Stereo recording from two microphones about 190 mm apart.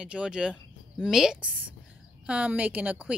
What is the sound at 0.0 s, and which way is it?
Speech, 5° right (ahead or behind).